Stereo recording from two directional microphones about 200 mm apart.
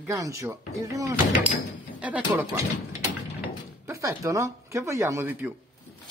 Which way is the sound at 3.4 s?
15° right (ahead or behind).